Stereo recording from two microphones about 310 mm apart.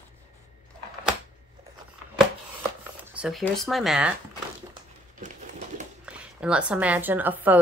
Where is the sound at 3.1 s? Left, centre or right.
Centre.